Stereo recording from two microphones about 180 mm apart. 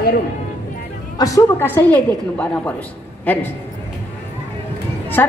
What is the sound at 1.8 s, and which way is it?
A woman's voice, 10° left (ahead or behind).